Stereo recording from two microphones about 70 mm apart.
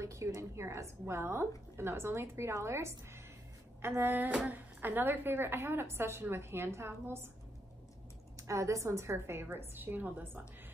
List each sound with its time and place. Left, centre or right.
0.0 s a woman's voice: right
8.4 s a woman's voice: right